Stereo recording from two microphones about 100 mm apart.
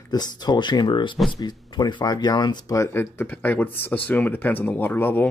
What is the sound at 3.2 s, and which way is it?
Speech, 15° left (ahead or behind).